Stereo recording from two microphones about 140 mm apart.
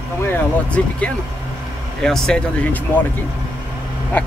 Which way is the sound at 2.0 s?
5° left (ahead or behind).